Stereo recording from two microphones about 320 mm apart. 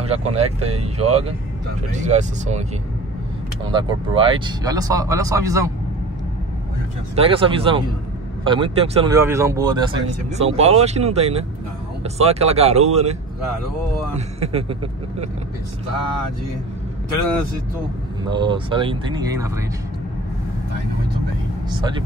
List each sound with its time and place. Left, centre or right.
0.0 s speech: centre
3.7 s speech: centre
7.2 s speech: centre
14.4 s speech: centre
18.3 s speech: centre
21.6 s speech: centre